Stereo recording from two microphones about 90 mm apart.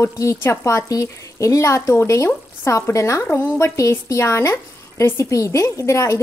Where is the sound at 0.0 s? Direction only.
35° left (ahead or behind).